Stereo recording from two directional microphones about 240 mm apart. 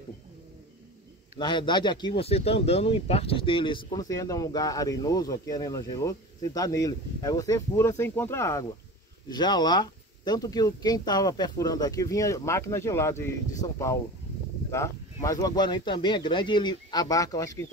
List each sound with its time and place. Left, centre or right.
1.4 s speech: centre
15.2 s speech: centre